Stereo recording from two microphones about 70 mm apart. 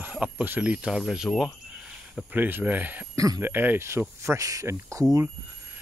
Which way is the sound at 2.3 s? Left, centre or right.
Right.